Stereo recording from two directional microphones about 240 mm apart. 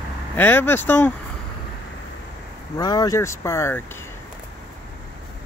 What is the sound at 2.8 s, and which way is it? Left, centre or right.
Speech, centre.